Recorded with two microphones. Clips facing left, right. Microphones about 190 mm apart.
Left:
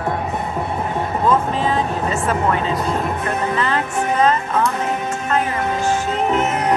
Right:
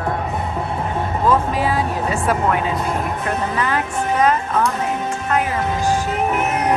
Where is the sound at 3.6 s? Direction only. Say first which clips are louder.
Left 1 dB; 10° right (ahead or behind).